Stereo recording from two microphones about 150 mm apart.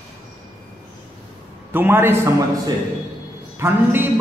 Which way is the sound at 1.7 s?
15° right (ahead or behind).